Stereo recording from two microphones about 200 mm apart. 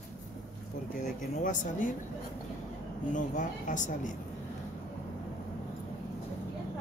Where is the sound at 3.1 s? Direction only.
40° left (ahead or behind).